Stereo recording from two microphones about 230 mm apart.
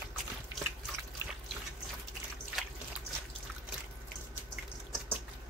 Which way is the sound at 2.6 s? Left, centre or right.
Centre.